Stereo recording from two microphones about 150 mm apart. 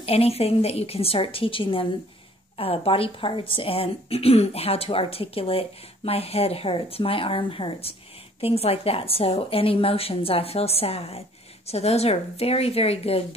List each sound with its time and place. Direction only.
0.0 s speech: 40° left (ahead or behind)